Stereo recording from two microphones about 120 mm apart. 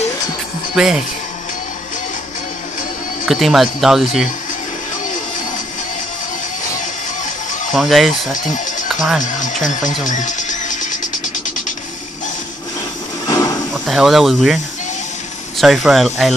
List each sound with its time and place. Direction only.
0.7 s speech: 5° right (ahead or behind)
3.3 s speech: centre (ahead or behind)
7.7 s speech: centre (ahead or behind)
8.3 s music: 90° left
9.2 s speech: 90° left
10.0 s music: 90° left
13.8 s speech: centre (ahead or behind)